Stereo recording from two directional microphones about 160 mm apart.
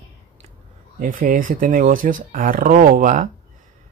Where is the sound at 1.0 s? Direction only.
55° right (ahead or behind).